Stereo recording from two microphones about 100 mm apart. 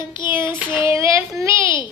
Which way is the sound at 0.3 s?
25° right (ahead or behind).